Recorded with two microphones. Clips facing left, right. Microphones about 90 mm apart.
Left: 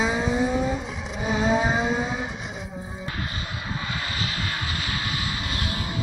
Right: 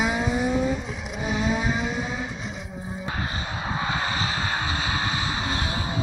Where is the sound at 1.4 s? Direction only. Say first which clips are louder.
Left 4 dB; 35° left (ahead or behind).